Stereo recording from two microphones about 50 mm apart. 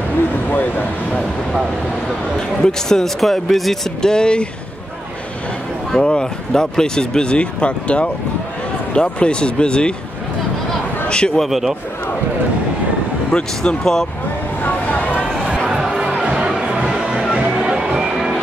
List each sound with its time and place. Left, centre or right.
0.5 s speech: left
2.6 s speech: centre
4.1 s speech: centre
6.0 s speech: centre
11.1 s a man's voice: centre
11.4 s a man's voice: centre
13.6 s speech: centre
14.6 s vehicle: left
16.2 s music: centre
18.1 s music: centre